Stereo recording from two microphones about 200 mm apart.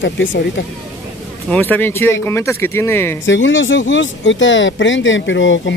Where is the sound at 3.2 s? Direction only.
70° left (ahead or behind).